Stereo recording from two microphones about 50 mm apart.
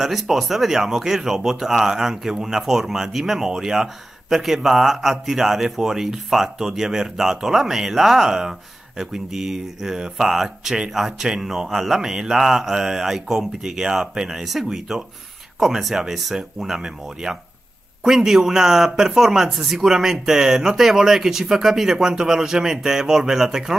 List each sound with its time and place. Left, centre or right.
0.0 s speech: centre